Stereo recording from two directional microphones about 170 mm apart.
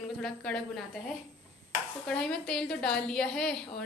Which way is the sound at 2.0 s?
5° left (ahead or behind).